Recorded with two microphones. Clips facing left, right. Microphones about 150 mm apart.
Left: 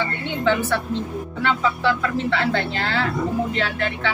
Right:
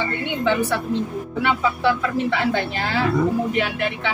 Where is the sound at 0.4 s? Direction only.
15° right (ahead or behind).